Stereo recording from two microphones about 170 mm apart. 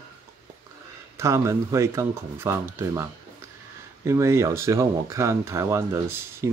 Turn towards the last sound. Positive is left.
turn(degrees=-15)  # may be behind; listen again after turning